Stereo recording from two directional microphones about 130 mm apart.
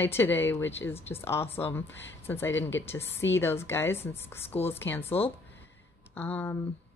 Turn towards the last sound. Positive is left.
turn(degrees=15)  # may be behind; listen again after turning